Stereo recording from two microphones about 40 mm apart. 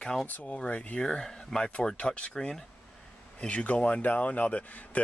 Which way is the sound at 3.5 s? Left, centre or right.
Left.